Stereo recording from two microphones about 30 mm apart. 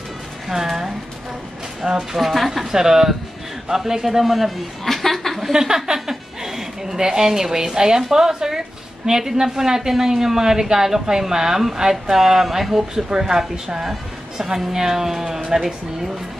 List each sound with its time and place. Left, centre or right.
0.5 s a sound: centre
1.8 s a woman's voice: right
2.1 s a woman's voice: centre
2.7 s a woman's voice: centre
4.2 s speech: centre
4.8 s chuckle: centre
5.5 s a woman's voice: centre